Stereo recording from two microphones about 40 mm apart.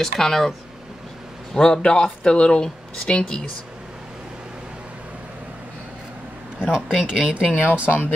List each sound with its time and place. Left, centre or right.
0.0 s speech: centre
1.5 s speech: centre
6.6 s speech: centre
7.4 s speech: left